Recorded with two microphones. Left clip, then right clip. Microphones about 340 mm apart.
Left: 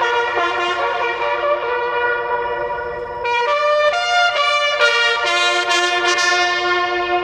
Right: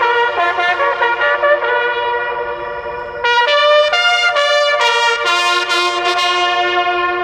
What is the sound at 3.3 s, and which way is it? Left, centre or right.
Trumpet, right.